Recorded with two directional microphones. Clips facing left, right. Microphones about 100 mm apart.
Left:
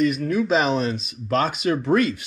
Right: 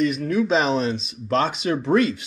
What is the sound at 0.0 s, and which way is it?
Speech, centre (ahead or behind).